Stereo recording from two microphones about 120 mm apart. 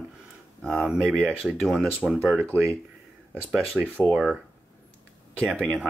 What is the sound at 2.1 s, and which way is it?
Speech, 15° right (ahead or behind).